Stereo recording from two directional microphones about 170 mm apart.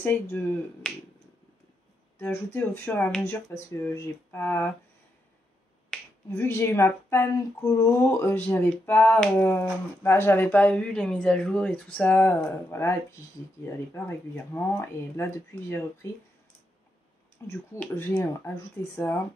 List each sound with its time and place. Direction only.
0.0 s speech: 10° left (ahead or behind)
0.8 s finger snapping: 5° left (ahead or behind)
2.1 s speech: 15° left (ahead or behind)
5.9 s finger snapping: 5° left (ahead or behind)
6.3 s speech: 15° left (ahead or behind)
13.9 s speech: 10° left (ahead or behind)
17.5 s speech: 15° left (ahead or behind)